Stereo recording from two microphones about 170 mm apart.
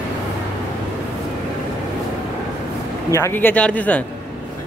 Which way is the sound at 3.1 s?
15° left (ahead or behind).